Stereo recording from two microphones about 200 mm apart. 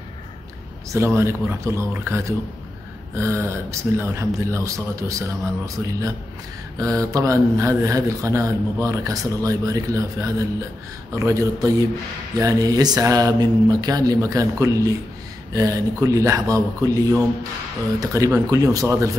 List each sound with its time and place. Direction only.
0.8 s speech: 15° right (ahead or behind)